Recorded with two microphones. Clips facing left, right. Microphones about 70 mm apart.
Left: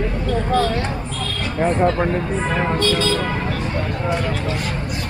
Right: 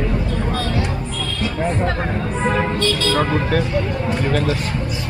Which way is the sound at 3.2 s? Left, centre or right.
Right.